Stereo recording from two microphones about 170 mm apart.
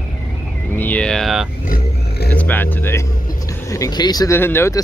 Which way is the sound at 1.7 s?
65° left (ahead or behind).